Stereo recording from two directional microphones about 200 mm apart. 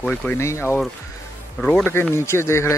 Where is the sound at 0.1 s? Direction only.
10° left (ahead or behind).